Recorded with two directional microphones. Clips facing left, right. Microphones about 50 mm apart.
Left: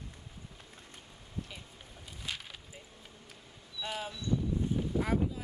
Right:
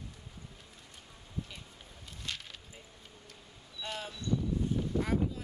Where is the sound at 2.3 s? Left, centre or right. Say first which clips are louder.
Left 1 dB; centre.